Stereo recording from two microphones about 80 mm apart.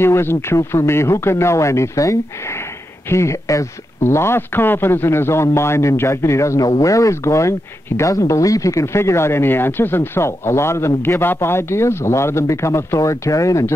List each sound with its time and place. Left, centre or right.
0.0 s speech: left